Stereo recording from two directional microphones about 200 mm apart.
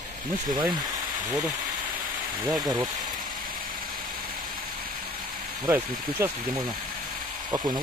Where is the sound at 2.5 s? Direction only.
20° right (ahead or behind).